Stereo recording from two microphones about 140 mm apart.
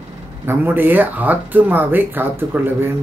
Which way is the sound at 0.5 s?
15° right (ahead or behind).